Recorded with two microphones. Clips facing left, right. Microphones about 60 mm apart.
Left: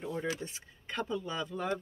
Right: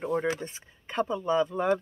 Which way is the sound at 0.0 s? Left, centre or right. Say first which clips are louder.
Right 7 dB; right.